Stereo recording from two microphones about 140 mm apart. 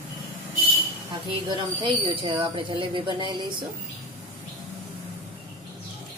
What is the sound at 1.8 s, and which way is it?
A woman's voice, 35° right (ahead or behind).